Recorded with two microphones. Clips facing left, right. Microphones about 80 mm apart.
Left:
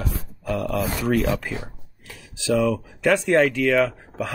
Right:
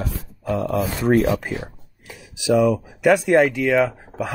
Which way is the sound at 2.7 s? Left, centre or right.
Centre.